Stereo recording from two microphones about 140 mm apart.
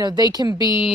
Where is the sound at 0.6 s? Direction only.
35° left (ahead or behind).